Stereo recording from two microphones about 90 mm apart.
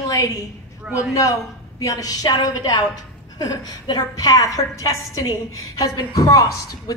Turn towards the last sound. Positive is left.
turn(degrees=45)  # may be behind; listen again after turning